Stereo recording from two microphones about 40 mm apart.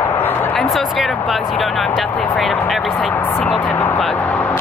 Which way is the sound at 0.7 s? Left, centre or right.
Centre.